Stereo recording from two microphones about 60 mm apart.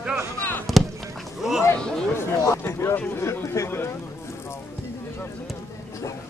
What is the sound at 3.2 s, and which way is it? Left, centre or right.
Chatter, left.